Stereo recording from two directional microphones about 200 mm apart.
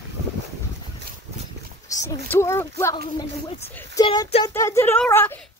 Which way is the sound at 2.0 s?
15° left (ahead or behind).